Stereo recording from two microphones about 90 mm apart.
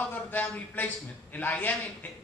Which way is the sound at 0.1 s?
20° left (ahead or behind).